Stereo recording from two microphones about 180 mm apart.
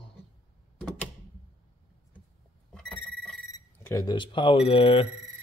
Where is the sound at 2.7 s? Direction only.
5° left (ahead or behind).